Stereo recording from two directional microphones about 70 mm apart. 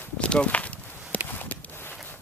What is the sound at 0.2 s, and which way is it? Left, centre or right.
Walk, centre.